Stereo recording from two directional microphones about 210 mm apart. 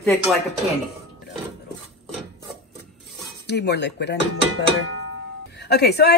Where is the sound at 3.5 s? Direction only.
55° left (ahead or behind).